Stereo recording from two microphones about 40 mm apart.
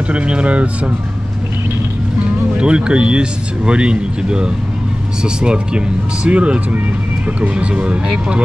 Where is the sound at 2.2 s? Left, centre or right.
Right.